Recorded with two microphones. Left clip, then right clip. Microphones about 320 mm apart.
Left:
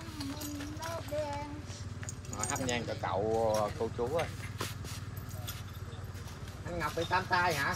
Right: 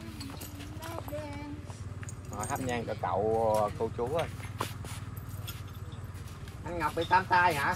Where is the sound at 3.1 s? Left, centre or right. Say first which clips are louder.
Right 3 dB; right.